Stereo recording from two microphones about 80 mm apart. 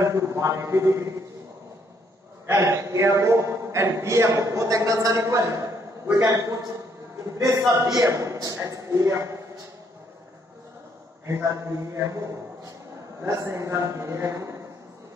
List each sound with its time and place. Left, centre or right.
0.0 s a man's voice: right
2.4 s a man's voice: right
2.9 s a man's voice: right
7.6 s a man's voice: right
8.0 s a man's voice: right
11.2 s a man's voice: right